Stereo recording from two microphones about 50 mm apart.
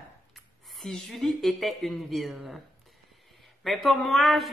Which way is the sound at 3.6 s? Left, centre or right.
Centre.